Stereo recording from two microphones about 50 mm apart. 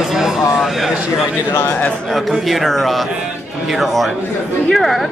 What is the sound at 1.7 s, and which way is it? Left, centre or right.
Speech, left.